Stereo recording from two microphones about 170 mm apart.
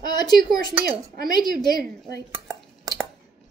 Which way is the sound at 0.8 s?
60° right (ahead or behind).